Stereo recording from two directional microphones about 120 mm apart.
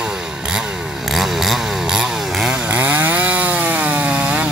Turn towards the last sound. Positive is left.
turn(degrees=-10)  # may be behind; listen again after turning